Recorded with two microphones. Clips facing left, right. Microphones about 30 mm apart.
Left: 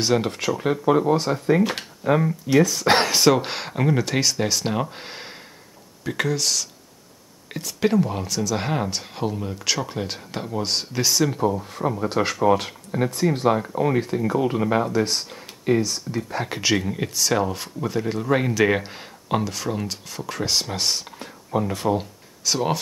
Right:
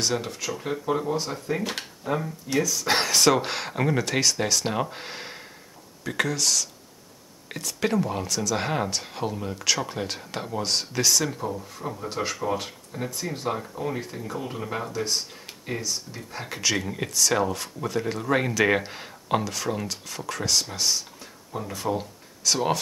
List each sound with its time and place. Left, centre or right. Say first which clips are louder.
0.0 s speech: left 6 dB; left
0.6 s speech: left 7 dB; left
2.0 s speech: left 8 dB; left
2.6 s speech: left 7 dB; left
3.1 s speech: left 2 dB; centre
11.7 s speech: left 8 dB; left
14.5 s speech: left 10 dB; left
16.7 s speech: left 4 dB; centre
20.4 s speech: left 1 dB; left
20.7 s speech: left 2 dB; left
21.8 s a sound: left 5 dB; centre
22.5 s speech: left 1 dB; centre